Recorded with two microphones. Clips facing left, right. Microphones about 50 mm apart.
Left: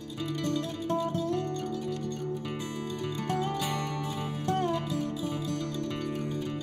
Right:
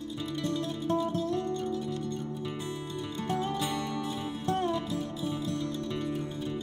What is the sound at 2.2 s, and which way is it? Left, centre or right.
Music, left.